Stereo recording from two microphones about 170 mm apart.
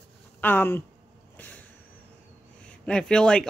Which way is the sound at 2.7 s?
5° left (ahead or behind).